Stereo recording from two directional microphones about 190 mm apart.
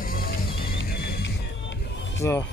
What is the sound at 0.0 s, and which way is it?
Music, 50° left (ahead or behind).